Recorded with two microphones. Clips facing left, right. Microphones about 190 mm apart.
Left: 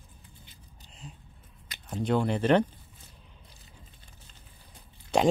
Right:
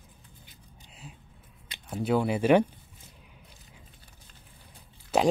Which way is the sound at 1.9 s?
5° right (ahead or behind).